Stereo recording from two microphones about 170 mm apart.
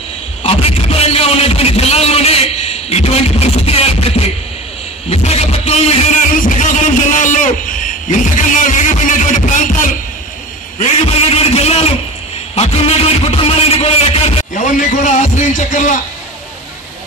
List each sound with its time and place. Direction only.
0.4 s a man's voice: 35° left (ahead or behind)
5.1 s music: 40° left (ahead or behind)
10.8 s a man's voice: 40° left (ahead or behind)
14.5 s music: 45° left (ahead or behind)